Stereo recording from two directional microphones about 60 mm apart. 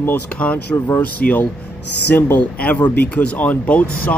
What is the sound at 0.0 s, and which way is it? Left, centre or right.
Speech, left.